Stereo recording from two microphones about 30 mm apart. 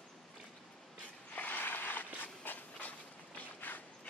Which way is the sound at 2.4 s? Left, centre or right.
Left.